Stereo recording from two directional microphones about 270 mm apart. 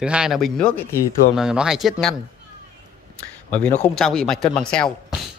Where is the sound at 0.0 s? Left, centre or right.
Centre.